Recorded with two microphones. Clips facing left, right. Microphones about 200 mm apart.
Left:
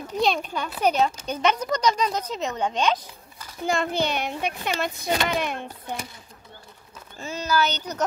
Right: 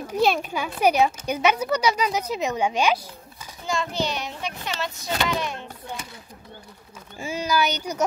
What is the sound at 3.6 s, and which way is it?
A child's voice, 55° left (ahead or behind).